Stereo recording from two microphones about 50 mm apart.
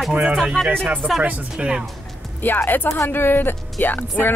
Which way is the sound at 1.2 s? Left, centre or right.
Right.